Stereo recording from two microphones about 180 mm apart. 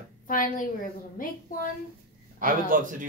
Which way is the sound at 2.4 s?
50° right (ahead or behind).